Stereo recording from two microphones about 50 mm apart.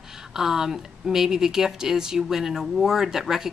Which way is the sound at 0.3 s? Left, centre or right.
Centre.